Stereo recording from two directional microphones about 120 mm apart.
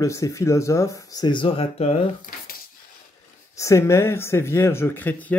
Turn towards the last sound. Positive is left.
turn(degrees=15)  # may be behind; listen again after turning